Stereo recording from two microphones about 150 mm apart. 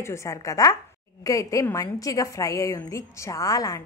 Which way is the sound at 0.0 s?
20° left (ahead or behind).